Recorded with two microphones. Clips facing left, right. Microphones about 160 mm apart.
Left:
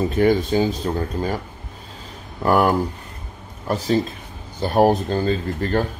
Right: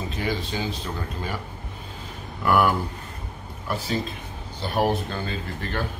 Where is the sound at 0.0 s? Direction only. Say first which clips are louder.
Left 11 dB; 50° left (ahead or behind).